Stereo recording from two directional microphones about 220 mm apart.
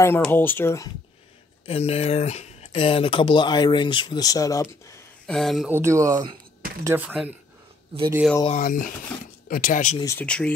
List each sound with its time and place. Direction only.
0.0 s speech: 10° left (ahead or behind)
1.7 s speech: 25° left (ahead or behind)
5.2 s speech: centre (ahead or behind)
5.7 s speech: 10° right (ahead or behind)
8.5 s speech: 35° left (ahead or behind)
9.9 s speech: 10° left (ahead or behind)